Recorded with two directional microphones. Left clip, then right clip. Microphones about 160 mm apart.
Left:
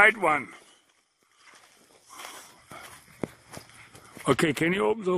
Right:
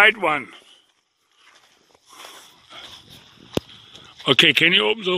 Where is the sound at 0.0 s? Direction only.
20° right (ahead or behind).